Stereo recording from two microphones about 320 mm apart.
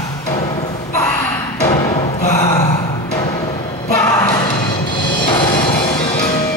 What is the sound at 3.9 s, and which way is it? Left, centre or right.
Music, centre.